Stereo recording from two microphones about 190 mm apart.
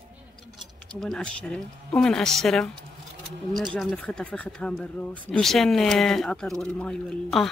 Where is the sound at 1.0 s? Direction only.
5° left (ahead or behind).